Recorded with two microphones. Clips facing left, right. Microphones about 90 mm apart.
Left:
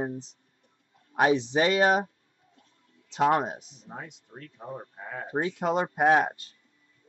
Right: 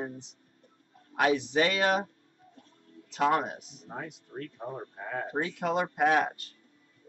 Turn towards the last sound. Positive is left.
turn(degrees=20)  # may be behind; listen again after turning